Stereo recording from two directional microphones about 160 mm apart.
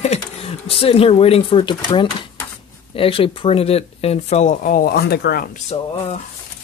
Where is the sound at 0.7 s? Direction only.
35° left (ahead or behind); by 5.6 s 70° left (ahead or behind).